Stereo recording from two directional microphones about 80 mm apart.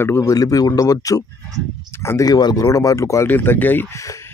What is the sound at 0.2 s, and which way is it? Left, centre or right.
Speech, left.